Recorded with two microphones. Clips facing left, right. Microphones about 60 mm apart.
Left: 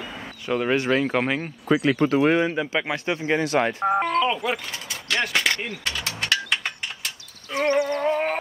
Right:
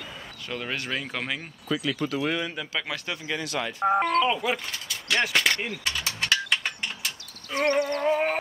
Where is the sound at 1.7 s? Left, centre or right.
Left.